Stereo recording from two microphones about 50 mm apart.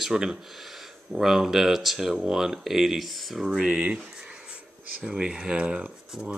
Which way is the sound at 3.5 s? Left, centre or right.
Centre.